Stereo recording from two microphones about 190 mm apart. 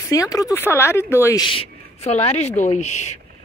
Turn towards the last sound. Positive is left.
turn(degrees=35)  # may be behind; listen again after turning